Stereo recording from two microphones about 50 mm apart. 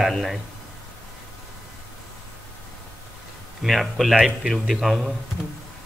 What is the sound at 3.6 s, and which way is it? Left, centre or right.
Speech, centre.